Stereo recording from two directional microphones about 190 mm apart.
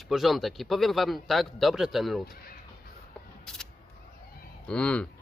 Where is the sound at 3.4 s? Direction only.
5° left (ahead or behind).